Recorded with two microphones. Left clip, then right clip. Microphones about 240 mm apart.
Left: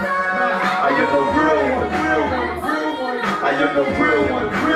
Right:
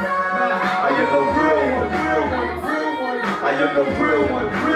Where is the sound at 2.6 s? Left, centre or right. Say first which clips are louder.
Left 1 dB; right.